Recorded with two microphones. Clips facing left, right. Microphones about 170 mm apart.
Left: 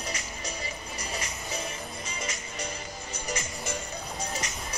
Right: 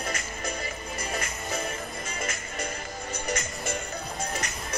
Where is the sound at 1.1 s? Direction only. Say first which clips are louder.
Right 3 dB; 55° right (ahead or behind).